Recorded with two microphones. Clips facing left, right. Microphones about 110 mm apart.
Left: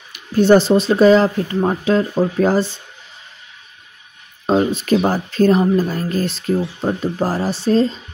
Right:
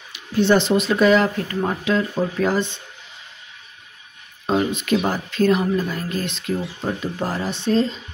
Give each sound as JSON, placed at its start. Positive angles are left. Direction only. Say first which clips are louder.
{"t": 0.1, "sound": "speech", "louder": "left 5 dB", "side_deg": 45}
{"t": 4.5, "sound": "speech", "louder": "left 4 dB", "side_deg": 35}